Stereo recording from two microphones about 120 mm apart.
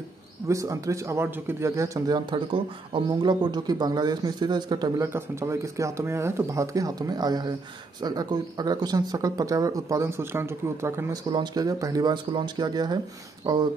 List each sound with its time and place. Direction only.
0.5 s speech: 25° right (ahead or behind)
11.2 s speech: 35° right (ahead or behind)